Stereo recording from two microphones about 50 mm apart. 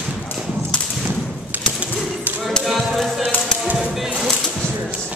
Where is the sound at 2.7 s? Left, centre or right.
Centre.